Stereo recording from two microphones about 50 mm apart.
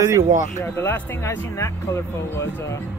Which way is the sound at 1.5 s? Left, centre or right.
Left.